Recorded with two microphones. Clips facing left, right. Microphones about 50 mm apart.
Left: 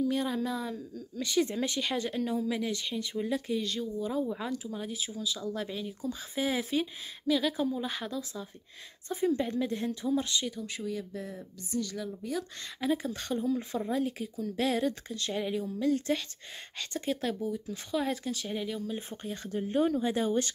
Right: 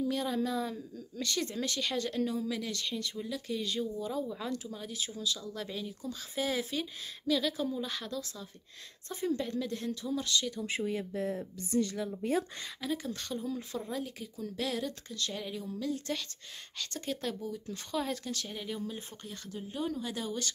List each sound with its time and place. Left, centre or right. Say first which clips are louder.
0.1 s a woman's voice: left 1 dB; centre
3.2 s speech: left 6 dB; left
3.5 s a woman's voice: left 2 dB; centre
4.0 s a woman's voice: left 3 dB; centre
10.6 s speech: right 2 dB; right
12.8 s a woman's voice: left 6 dB; centre
18.9 s a woman's voice: left 6 dB; left
19.5 s a woman's voice: left 8 dB; left